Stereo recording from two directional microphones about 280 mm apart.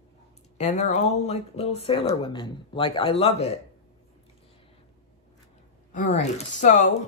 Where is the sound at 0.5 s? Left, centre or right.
Left.